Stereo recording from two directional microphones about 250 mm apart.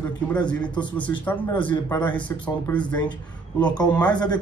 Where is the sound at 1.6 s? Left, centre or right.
Centre.